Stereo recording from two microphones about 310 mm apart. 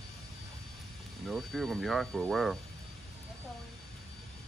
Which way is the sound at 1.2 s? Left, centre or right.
Centre.